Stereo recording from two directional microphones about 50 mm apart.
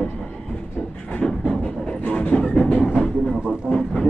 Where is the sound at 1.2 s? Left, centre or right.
Centre.